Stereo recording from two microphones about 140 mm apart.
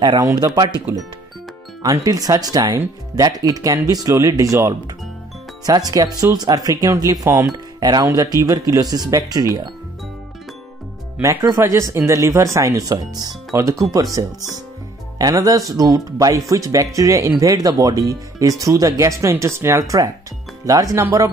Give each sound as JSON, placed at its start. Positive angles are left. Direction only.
{"t": 0.0, "sound": "speech", "side_deg": -30}
{"t": 1.8, "sound": "speech", "side_deg": -25}
{"t": 11.1, "sound": "speech", "side_deg": -20}